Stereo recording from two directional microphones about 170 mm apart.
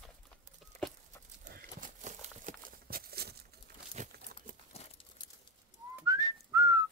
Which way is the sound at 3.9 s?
45° right (ahead or behind).